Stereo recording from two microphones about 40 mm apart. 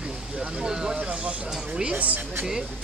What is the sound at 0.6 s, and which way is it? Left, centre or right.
Speech, centre.